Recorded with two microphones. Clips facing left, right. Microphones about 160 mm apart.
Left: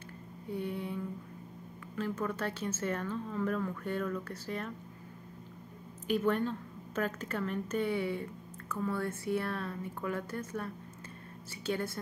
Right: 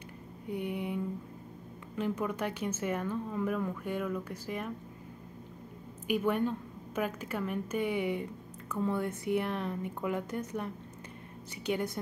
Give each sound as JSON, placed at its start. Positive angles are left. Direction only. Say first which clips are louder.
{"t": 0.5, "sound": "mantra", "louder": "right 2 dB", "side_deg": -15}
{"t": 2.0, "sound": "a woman's voice", "louder": "right 2 dB", "side_deg": -15}
{"t": 6.0, "sound": "a woman's voice", "louder": "right 1 dB", "side_deg": -10}